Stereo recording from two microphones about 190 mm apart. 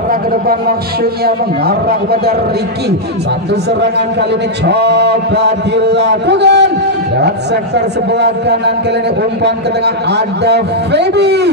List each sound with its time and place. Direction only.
0.1 s a man's voice: 50° right (ahead or behind)
4.6 s a man's voice: 65° right (ahead or behind)